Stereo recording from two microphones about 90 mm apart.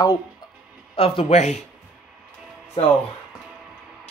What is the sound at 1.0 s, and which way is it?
Speech, 90° left.